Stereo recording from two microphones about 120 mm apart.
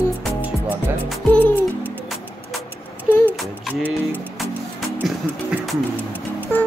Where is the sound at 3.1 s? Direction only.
25° left (ahead or behind).